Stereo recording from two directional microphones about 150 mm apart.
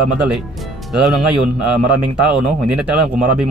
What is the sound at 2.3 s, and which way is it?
Speech, 5° right (ahead or behind).